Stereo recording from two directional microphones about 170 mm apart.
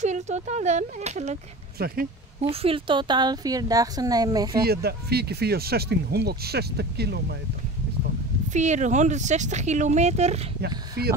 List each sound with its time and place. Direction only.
0.0 s speech: 45° right (ahead or behind)
1.8 s speech: 65° right (ahead or behind)
2.4 s a woman's voice: 35° right (ahead or behind)
4.6 s speech: 70° right (ahead or behind)
8.5 s speech: 45° right (ahead or behind)
11.0 s speech: 65° right (ahead or behind)